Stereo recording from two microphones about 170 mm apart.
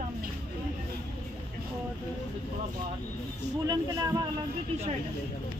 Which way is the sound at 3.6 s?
20° right (ahead or behind).